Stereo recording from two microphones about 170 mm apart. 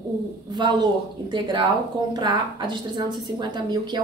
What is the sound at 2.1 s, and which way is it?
A woman's voice, 25° right (ahead or behind).